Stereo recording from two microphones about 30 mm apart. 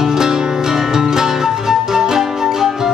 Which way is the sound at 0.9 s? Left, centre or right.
Centre.